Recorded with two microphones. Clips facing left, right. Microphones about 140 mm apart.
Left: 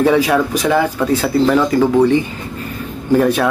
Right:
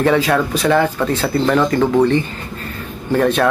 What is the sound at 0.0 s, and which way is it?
Speech, 10° left (ahead or behind).